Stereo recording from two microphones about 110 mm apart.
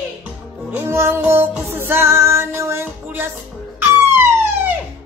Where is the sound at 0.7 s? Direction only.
25° right (ahead or behind).